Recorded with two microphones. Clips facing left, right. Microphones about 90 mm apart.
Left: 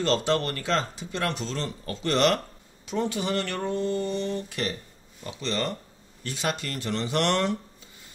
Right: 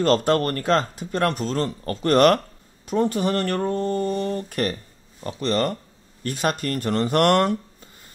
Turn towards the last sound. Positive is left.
turn(degrees=-50)  # may be behind; listen again after turning